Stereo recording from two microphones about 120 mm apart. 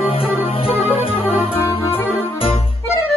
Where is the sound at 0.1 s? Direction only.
50° left (ahead or behind).